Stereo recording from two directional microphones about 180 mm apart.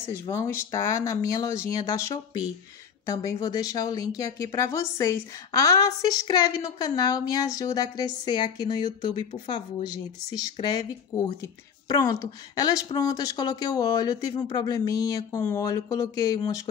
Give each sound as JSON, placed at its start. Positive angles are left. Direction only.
{"t": 0.1, "sound": "a woman's voice", "side_deg": 15}